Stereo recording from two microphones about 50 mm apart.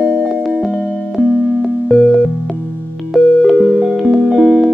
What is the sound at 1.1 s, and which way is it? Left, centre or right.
Music, centre.